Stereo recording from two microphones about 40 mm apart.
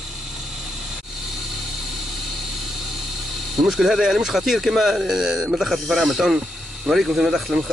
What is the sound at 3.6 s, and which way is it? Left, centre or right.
Speech, centre.